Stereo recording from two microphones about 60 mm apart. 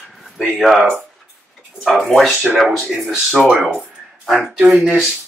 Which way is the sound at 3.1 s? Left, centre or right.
Centre.